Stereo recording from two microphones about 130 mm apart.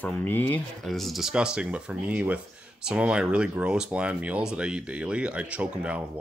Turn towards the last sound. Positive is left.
turn(degrees=-10)  # may be behind; listen again after turning